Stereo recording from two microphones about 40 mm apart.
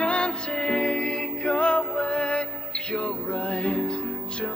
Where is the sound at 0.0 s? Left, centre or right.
Left.